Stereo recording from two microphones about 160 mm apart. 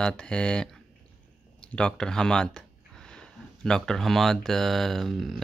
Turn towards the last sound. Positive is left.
turn(degrees=0)  # may be behind; listen again after turning